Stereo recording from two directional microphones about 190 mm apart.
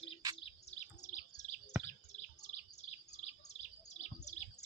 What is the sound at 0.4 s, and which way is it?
Bird vocalization, 30° left (ahead or behind).